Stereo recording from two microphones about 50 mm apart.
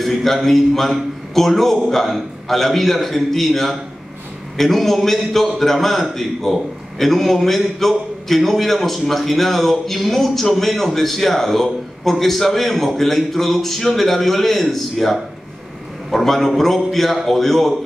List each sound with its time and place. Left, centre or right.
0.0 s a man's voice: centre